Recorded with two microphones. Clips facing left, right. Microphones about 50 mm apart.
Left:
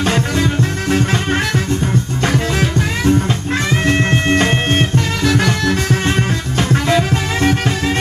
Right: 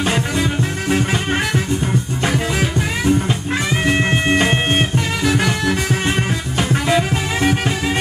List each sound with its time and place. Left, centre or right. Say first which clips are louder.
0.0 s music: left 2 dB; centre
3.8 s music: even; centre